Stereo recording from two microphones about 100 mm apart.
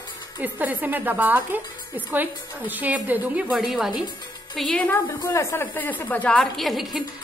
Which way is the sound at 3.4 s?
Centre (ahead or behind).